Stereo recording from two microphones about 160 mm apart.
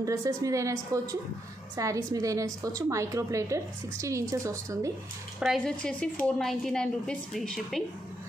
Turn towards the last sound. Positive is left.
turn(degrees=0)  # may be behind; listen again after turning